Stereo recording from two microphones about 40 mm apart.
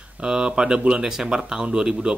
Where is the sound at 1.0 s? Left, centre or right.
Centre.